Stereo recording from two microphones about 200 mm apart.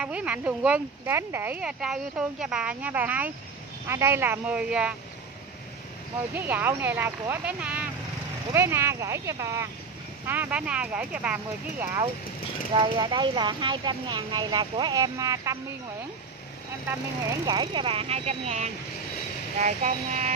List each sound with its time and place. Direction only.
0.0 s speech: 5° right (ahead or behind)
6.3 s speech: 10° right (ahead or behind)
17.5 s speech: 20° right (ahead or behind)